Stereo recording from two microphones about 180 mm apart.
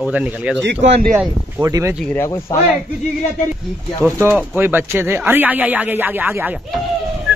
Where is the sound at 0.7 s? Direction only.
70° right (ahead or behind).